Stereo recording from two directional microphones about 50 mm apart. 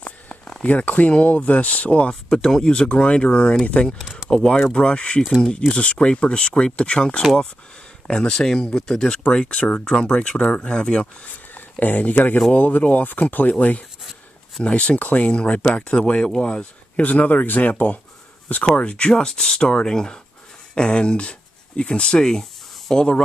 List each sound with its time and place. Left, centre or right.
0.7 s speech: left
11.2 s speech: left; by 17.0 s centre
17.0 s speech: left
18.8 s speech: left